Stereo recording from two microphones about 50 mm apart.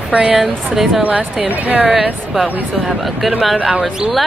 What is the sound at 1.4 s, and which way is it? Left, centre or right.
Speech, right.